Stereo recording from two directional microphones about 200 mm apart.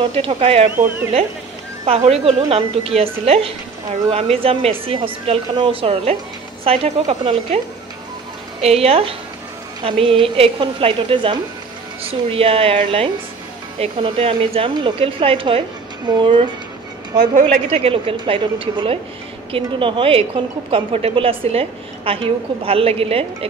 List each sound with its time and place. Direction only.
0.0 s a woman's voice: 30° right (ahead or behind)
1.9 s a woman's voice: 30° right (ahead or behind)
17.6 s a woman's voice: 30° right (ahead or behind)